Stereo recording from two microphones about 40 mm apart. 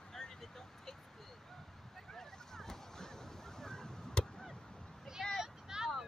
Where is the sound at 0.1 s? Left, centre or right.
Centre.